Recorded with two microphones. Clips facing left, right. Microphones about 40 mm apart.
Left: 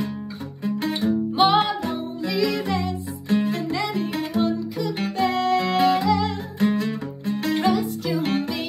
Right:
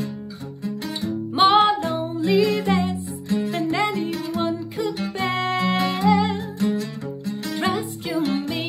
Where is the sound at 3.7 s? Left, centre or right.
Right.